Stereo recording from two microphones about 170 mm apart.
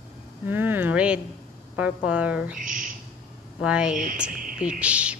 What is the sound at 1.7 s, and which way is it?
Speech, 10° right (ahead or behind).